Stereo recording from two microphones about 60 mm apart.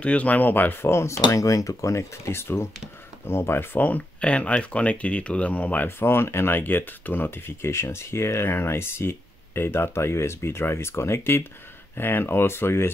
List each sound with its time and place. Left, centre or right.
0.0 s speech: left
0.8 s speech: left
4.2 s speech: left
5.9 s speech: left
7.2 s speech: left